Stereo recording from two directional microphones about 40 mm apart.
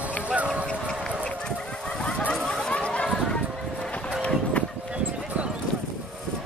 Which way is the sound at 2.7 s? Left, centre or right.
Left.